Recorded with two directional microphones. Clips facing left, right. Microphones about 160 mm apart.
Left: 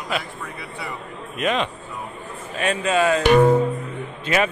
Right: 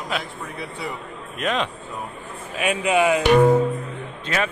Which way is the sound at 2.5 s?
10° right (ahead or behind).